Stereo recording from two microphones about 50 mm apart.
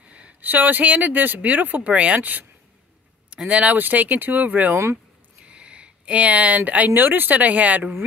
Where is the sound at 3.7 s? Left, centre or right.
Right.